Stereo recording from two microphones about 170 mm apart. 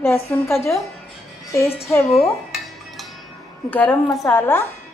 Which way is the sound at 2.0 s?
Centre (ahead or behind).